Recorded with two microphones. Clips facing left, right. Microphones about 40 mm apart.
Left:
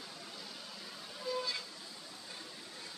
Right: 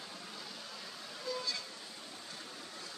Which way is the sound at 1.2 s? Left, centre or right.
Centre.